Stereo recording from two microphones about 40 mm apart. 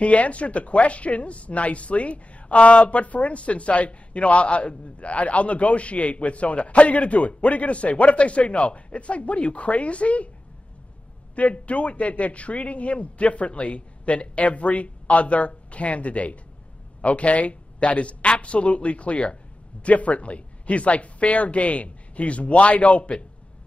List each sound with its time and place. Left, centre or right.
0.0 s speech: left
11.3 s speech: left